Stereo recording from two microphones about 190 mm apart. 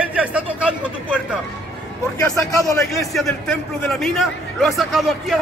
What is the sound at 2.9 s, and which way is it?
A man's voice, centre (ahead or behind).